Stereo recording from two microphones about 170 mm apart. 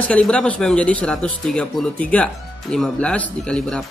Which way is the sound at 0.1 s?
5° left (ahead or behind).